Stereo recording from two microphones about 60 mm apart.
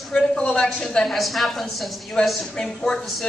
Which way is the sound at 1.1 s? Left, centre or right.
Centre.